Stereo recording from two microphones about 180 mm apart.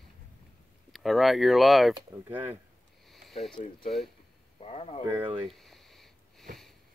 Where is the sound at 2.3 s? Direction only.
10° right (ahead or behind).